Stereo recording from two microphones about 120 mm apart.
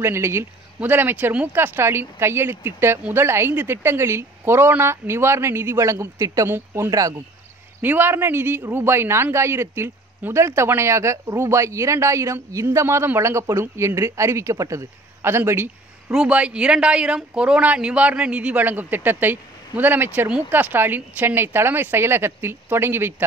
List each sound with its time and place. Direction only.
0.0 s a man's voice: 20° right (ahead or behind)
7.8 s a man's voice: 15° right (ahead or behind)
16.1 s speech: 10° right (ahead or behind)